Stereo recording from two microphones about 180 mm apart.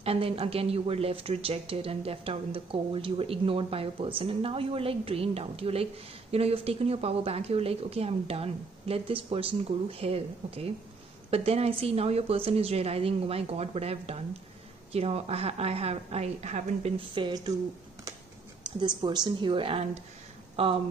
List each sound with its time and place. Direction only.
0.0 s speech: 30° right (ahead or behind)
17.1 s a woman's voice: 25° right (ahead or behind)
18.9 s a woman's voice: 25° right (ahead or behind)